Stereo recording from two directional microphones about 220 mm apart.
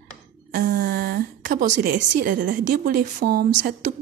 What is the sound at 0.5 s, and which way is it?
A woman's voice, 40° right (ahead or behind).